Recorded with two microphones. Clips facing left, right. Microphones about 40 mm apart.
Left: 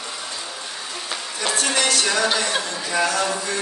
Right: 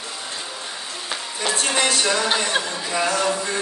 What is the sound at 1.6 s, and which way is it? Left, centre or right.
Speech, centre.